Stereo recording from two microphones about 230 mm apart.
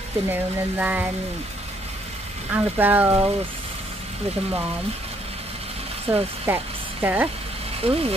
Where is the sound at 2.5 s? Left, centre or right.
Centre.